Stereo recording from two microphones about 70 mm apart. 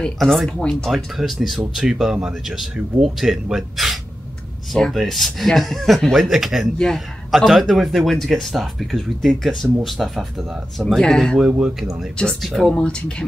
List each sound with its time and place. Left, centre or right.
0.2 s speech: centre
0.8 s a man's voice: centre
11.0 s speech: centre
11.5 s speech: centre
12.4 s speech: centre